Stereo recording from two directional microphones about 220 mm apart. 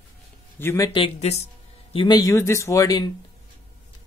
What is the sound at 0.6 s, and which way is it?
Speech, 10° left (ahead or behind).